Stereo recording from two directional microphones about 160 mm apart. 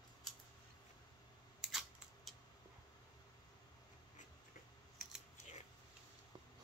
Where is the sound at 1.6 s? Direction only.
Centre (ahead or behind).